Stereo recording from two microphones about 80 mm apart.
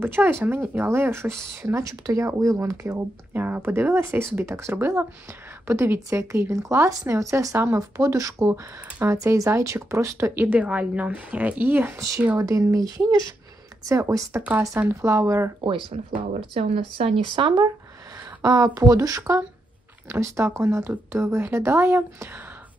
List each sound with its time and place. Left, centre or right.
0.0 s speech: right
3.3 s speech: right
10.3 s a woman's voice: right
12.0 s speech: right
15.6 s speech: right
16.9 s speech: right
18.4 s speech: right